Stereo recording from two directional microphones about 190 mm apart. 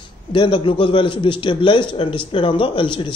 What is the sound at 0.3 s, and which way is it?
A man's voice, 25° left (ahead or behind).